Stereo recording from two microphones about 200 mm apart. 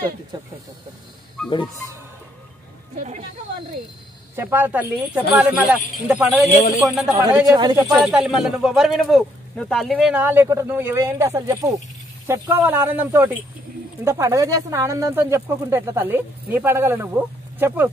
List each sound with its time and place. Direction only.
0.3 s speech: 20° right (ahead or behind)
4.4 s a man's voice: 10° right (ahead or behind)
7.2 s speech: 15° right (ahead or behind)
8.1 s speech: centre (ahead or behind)